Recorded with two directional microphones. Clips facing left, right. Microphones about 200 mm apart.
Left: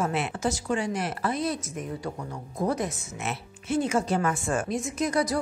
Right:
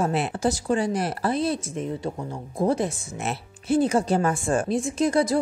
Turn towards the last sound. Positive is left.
turn(degrees=-30)  # may be behind; listen again after turning